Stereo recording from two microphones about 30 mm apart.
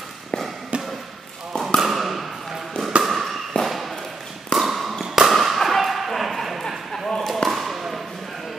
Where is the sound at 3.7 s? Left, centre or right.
Centre.